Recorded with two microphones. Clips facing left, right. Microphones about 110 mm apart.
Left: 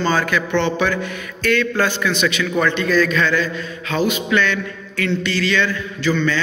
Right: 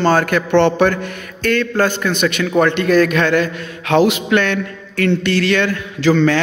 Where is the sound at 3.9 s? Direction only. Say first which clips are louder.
Right 5 dB; 80° right.